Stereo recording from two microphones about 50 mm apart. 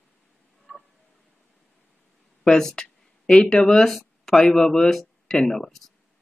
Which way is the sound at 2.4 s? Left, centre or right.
Centre.